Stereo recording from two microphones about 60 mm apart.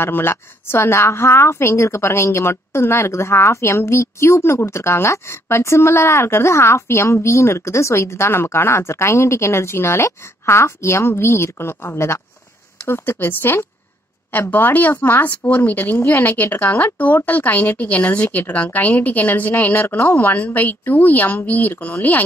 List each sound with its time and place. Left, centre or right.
0.0 s speech: left